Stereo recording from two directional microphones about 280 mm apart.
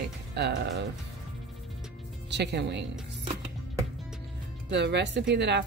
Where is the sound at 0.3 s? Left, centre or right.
Right.